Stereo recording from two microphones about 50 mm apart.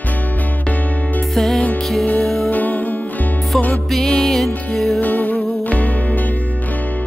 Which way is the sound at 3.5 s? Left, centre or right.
Centre.